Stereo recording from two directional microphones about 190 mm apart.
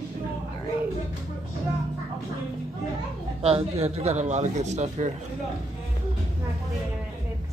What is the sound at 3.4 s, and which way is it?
A man's voice, 30° right (ahead or behind).